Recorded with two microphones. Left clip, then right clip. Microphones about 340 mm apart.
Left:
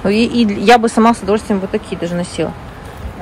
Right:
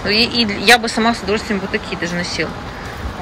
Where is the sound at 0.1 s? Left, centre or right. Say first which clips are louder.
Right 3 dB; centre.